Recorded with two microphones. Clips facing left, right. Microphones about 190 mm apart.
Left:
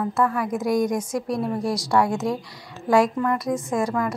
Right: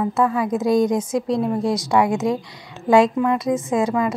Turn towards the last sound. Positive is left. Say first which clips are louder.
# right 4 dB
turn(degrees=-20)  # may be behind; listen again after turning